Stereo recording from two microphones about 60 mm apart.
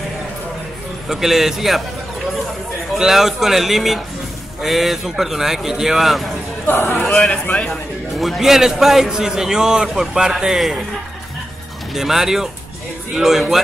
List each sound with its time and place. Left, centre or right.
1.0 s speech: centre
3.0 s speech: centre
6.7 s a man's voice: left
7.2 s a man's voice: left
8.2 s a man's voice: centre
11.9 s speech: centre